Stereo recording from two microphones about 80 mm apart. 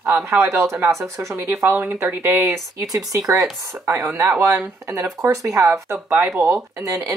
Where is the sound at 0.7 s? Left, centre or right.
Right.